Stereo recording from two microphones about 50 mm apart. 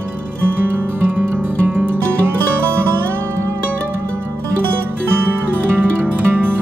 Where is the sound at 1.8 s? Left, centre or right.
Right.